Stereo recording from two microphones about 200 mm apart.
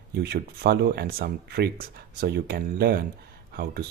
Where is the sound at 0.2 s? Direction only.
55° right (ahead or behind).